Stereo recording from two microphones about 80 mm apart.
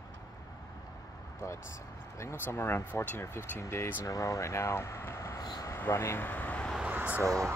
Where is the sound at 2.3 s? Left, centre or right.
Left.